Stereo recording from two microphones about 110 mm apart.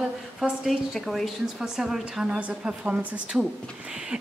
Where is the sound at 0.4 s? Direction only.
Centre (ahead or behind).